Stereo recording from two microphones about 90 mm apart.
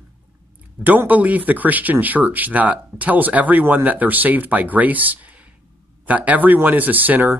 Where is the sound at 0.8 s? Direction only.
20° right (ahead or behind).